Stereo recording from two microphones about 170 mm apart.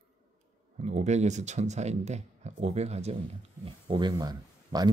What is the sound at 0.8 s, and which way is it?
Speech, 40° right (ahead or behind).